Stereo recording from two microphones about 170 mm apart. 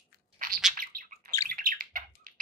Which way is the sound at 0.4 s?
55° right (ahead or behind).